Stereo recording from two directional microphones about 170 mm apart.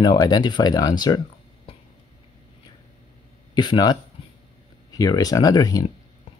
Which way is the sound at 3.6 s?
25° left (ahead or behind).